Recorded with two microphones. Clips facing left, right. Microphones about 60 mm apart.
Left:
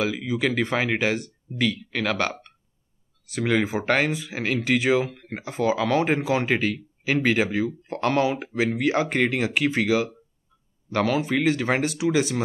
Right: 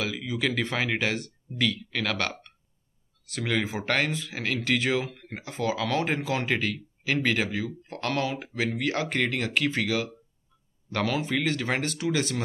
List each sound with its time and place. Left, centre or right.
0.0 s speech: centre